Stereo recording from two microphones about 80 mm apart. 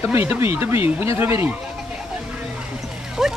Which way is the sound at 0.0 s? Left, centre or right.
Right.